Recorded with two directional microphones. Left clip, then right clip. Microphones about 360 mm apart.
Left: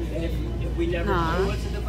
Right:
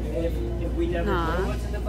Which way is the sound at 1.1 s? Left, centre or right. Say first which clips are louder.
Left 4 dB; centre.